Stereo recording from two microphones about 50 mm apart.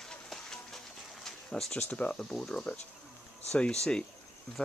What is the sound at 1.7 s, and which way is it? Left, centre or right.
Speech, left.